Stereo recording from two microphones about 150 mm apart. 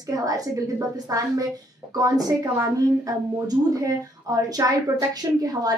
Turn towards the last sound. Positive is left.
turn(degrees=-20)  # may be behind; listen again after turning